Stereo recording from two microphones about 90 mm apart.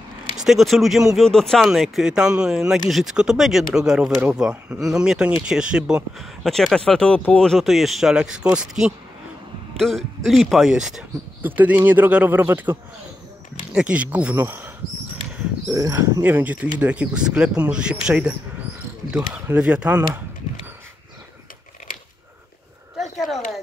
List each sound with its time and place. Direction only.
0.4 s speech: 5° right (ahead or behind)
1.7 s speech: 5° right (ahead or behind)
6.4 s speech: 5° left (ahead or behind)
9.8 s speech: 5° left (ahead or behind)
11.4 s speech: 20° right (ahead or behind)
13.7 s speech: 10° right (ahead or behind)
14.4 s speech: 25° right (ahead or behind)
15.7 s speech: 35° right (ahead or behind)
16.0 s speech: 20° right (ahead or behind)
19.5 s speech: 15° right (ahead or behind)
22.9 s a sound: centre (ahead or behind)